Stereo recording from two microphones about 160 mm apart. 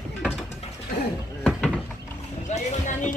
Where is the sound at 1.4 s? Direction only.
10° left (ahead or behind).